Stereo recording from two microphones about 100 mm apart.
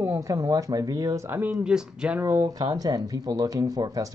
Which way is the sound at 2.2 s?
35° right (ahead or behind).